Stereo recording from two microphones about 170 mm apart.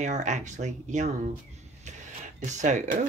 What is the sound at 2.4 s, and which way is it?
Speech, 45° right (ahead or behind).